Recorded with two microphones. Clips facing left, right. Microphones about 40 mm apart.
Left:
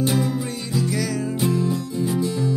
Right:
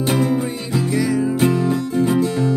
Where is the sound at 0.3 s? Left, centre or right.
Right.